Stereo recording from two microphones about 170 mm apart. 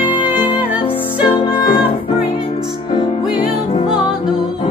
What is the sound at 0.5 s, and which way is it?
Music, 10° right (ahead or behind).